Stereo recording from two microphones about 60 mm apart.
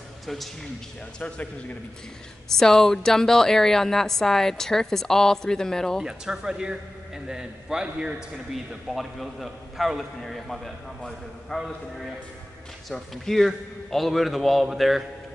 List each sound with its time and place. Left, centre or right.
2.5 s a woman's voice: centre
6.0 s a man's voice: centre
8.8 s a man's voice: centre
12.9 s a man's voice: centre